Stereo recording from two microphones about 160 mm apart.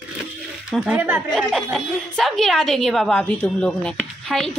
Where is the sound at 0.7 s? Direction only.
5° right (ahead or behind).